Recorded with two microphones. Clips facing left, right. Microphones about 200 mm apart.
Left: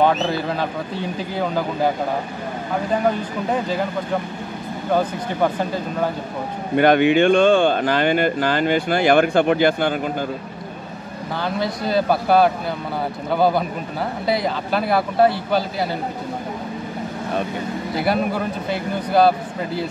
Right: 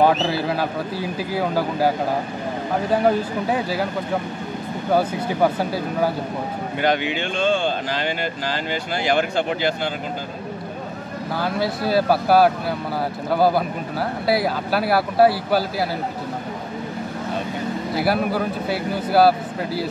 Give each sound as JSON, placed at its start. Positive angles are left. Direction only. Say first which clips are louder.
{"t": 0.0, "sound": "speech", "louder": "even", "side_deg": -5}
{"t": 3.4, "sound": "speech", "louder": "left 4 dB", "side_deg": -5}
{"t": 4.9, "sound": "speech", "louder": "right 1 dB", "side_deg": -5}
{"t": 6.8, "sound": "speech", "louder": "left 8 dB", "side_deg": 55}
{"t": 11.3, "sound": "speech", "louder": "even", "side_deg": -5}
{"t": 17.9, "sound": "speech", "louder": "even", "side_deg": -5}